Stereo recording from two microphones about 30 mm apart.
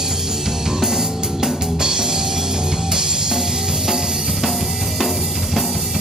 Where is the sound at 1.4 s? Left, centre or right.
Centre.